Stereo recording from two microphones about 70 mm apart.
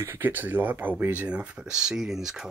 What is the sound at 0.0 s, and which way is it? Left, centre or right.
Speech, right.